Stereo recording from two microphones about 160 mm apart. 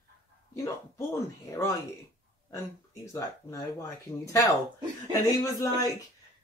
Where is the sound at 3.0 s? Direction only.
20° left (ahead or behind).